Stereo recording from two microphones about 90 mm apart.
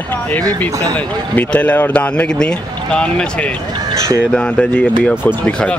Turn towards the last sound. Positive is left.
turn(degrees=10)  # may be behind; listen again after turning